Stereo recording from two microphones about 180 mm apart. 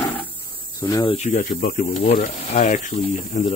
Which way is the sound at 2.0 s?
40° left (ahead or behind).